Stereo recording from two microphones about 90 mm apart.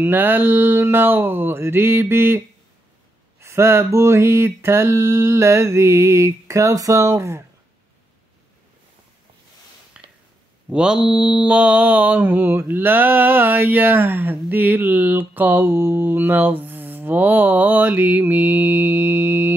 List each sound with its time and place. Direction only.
0.0 s mantra: 20° right (ahead or behind)
9.9 s a sound: 15° right (ahead or behind)
10.7 s mantra: 10° right (ahead or behind); by 19.5 s 25° right (ahead or behind)